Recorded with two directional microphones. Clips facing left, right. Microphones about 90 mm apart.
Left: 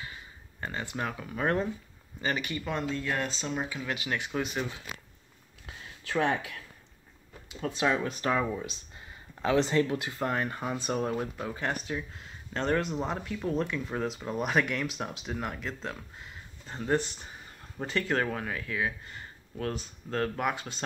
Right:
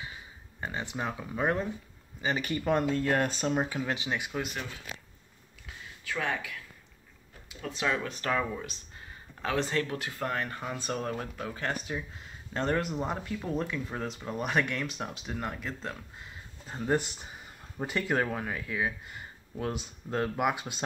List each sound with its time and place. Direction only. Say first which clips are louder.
0.6 s speech: even; 15° right (ahead or behind)
2.3 s speech: right 5 dB; 35° right (ahead or behind)
3.8 s speech: right 2 dB; 30° right (ahead or behind)
4.3 s speech: left 5 dB; 5° left (ahead or behind)
6.0 s speech: left 5 dB; 35° left (ahead or behind)
7.7 s speech: left 3 dB; 20° left (ahead or behind)
11.9 s speech: left 1 dB; 5° right (ahead or behind)